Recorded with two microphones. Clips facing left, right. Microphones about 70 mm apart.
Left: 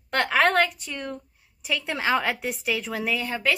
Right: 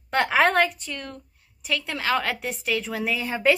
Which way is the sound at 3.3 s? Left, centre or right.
Right.